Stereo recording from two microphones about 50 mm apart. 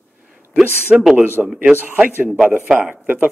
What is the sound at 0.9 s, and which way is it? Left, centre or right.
Speech, centre.